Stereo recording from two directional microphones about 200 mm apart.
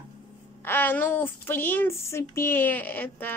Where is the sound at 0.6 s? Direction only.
10° left (ahead or behind).